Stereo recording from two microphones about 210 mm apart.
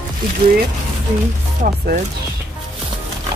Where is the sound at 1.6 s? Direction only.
40° right (ahead or behind).